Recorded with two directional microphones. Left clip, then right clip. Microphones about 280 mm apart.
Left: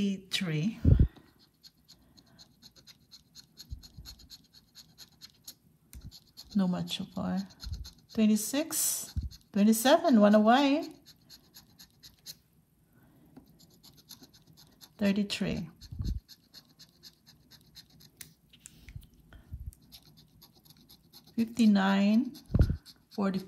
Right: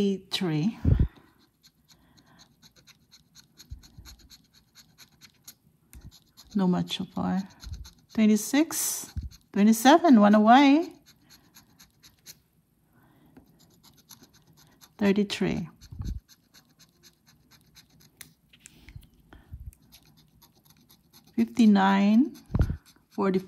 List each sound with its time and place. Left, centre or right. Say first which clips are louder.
0.0 s speech: right 5 dB; centre
2.1 s scratch: right 2 dB; centre
6.6 s speech: right 6 dB; right
13.6 s scratch: even; centre
15.0 s speech: right 6 dB; right
17.0 s pant: left 3 dB; right
20.2 s a sound: left 1 dB; centre
21.3 s speech: right 5 dB; right
22.8 s a sound: right 6 dB; right